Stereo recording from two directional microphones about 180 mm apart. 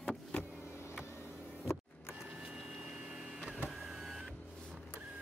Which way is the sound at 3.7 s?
Centre (ahead or behind).